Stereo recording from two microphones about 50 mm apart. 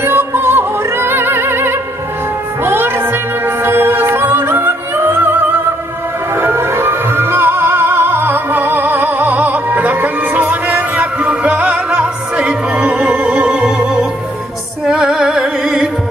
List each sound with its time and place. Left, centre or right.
0.0 s music: right
14.9 s music: centre